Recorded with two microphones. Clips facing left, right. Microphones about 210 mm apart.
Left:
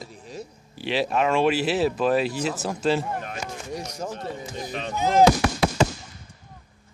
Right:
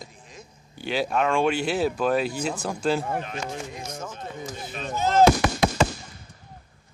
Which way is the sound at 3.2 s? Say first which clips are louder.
Right 2 dB; 45° left (ahead or behind).